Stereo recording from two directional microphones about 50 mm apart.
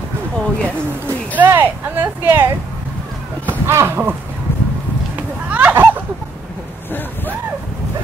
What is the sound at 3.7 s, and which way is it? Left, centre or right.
Speech, right.